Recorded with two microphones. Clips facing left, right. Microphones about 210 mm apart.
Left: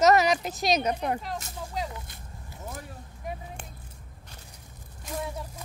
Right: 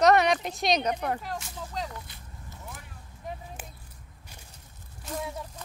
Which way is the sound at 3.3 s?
10° left (ahead or behind).